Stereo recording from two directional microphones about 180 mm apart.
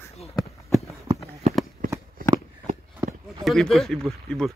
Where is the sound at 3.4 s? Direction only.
Centre (ahead or behind).